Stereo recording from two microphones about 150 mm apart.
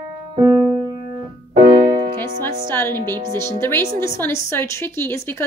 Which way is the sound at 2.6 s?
15° left (ahead or behind).